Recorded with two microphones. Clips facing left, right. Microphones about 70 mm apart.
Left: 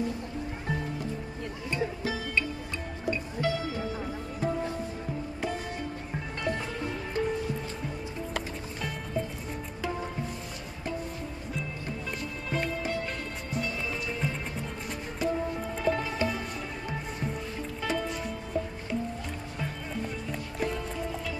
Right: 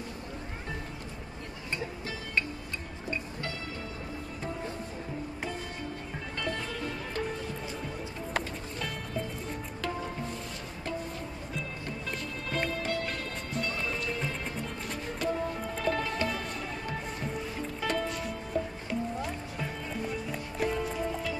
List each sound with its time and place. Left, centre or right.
6.4 s music: centre
12.4 s music: centre
17.8 s music: centre
20.2 s music: centre